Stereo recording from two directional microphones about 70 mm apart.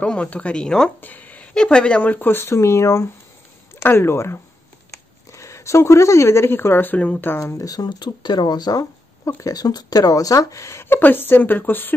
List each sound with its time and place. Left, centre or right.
0.0 s speech: centre
1.0 s a sound: left
1.5 s speech: centre; by 7.1 s left
7.6 s speech: left